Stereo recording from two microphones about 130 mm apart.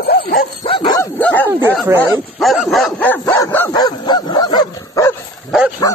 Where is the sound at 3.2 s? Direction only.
25° left (ahead or behind).